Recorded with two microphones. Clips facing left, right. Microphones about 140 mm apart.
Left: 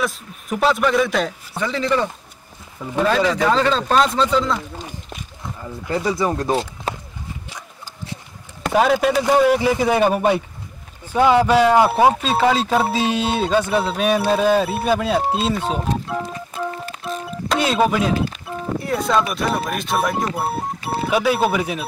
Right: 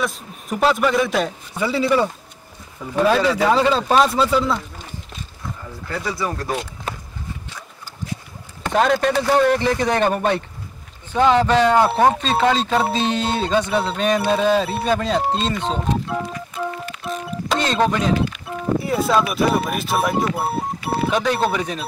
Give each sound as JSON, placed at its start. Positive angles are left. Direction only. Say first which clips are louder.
{"t": 0.0, "sound": "speech", "louder": "left 1 dB", "side_deg": 0}
{"t": 5.9, "sound": "speech", "louder": "left 5 dB", "side_deg": 20}
{"t": 8.7, "sound": "speech", "louder": "left 1 dB", "side_deg": 5}
{"t": 17.0, "sound": "music", "louder": "right 1 dB", "side_deg": 0}
{"t": 18.4, "sound": "speech", "louder": "right 3 dB", "side_deg": 0}